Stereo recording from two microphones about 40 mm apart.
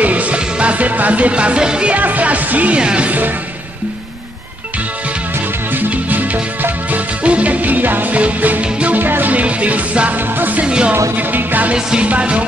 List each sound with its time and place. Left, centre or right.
0.0 s music: right
2.0 s music: right
2.8 s music: right
5.7 s music: right
8.9 s music: right
9.3 s music: right
10.1 s music: right
10.6 s music: right
10.9 s music: right
11.7 s music: right